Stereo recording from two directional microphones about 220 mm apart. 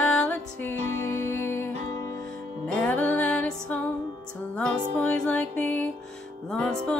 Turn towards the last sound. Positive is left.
turn(degrees=5)  # may be behind; listen again after turning